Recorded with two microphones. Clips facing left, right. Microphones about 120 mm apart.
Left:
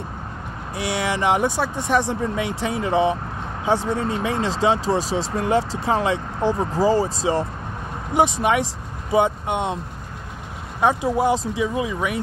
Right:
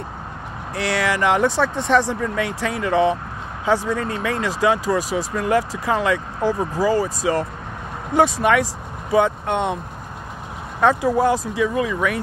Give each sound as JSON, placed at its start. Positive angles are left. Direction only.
{"t": 0.7, "sound": "speech", "side_deg": 15}
{"t": 10.8, "sound": "speech", "side_deg": 15}